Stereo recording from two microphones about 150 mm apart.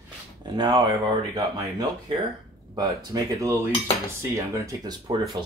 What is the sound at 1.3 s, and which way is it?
Cutlery, 20° right (ahead or behind).